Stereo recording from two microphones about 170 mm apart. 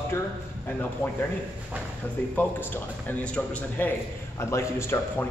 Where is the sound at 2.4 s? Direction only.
10° left (ahead or behind).